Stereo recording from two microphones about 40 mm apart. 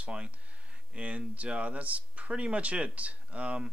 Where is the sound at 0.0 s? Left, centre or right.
Right.